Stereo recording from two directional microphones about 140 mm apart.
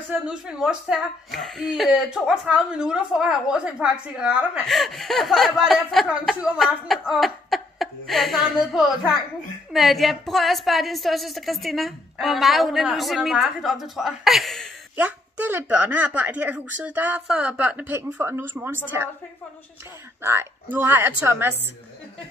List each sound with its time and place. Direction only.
0.1 s speech: 5° right (ahead or behind)
15.0 s speech: 15° right (ahead or behind)
20.2 s speech: 15° right (ahead or behind)